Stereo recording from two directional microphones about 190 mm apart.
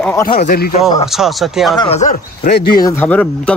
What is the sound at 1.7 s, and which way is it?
Speech, 25° left (ahead or behind).